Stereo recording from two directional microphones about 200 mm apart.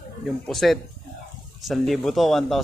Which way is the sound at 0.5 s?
Centre (ahead or behind).